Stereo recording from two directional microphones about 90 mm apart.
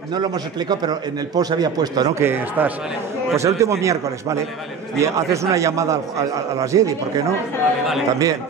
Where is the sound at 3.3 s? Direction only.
35° right (ahead or behind).